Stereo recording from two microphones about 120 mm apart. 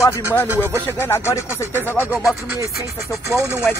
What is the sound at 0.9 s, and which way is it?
Speech, 20° left (ahead or behind).